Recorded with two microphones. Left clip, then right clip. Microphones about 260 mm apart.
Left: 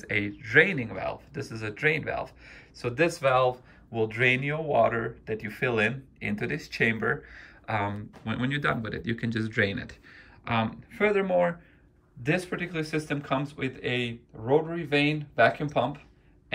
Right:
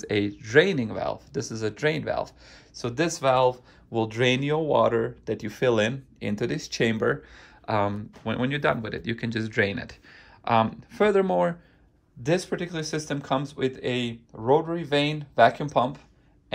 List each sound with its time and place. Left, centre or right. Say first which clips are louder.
0.0 s speech: right 3 dB; centre
14.4 s speech: right 3 dB; right
14.8 s speech: right 1 dB; centre